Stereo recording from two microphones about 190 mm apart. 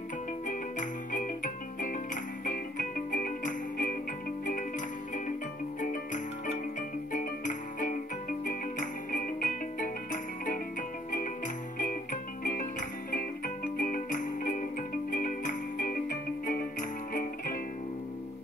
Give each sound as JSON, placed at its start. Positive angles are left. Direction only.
{"t": 0.5, "sound": "music", "side_deg": 45}
{"t": 13.7, "sound": "music", "side_deg": 45}